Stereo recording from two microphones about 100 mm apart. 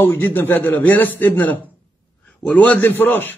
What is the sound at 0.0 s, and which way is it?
A man's voice, 20° left (ahead or behind).